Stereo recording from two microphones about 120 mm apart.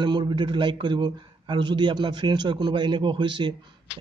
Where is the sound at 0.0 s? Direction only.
40° right (ahead or behind).